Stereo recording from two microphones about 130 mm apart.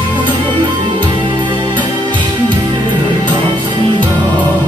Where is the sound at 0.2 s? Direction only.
35° right (ahead or behind).